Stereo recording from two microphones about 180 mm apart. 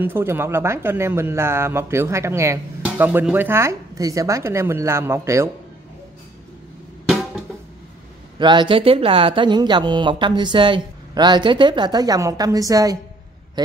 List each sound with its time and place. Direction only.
0.0 s speech: 10° right (ahead or behind)
7.1 s drum: centre (ahead or behind)
8.4 s speech: 25° right (ahead or behind)